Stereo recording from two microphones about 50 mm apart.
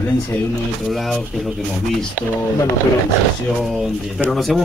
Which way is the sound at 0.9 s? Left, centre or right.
Centre.